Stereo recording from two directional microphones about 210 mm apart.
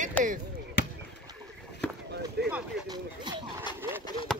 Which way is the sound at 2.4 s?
50° right (ahead or behind).